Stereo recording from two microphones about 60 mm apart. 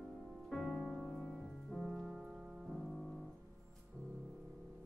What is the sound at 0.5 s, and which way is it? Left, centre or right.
Music, centre.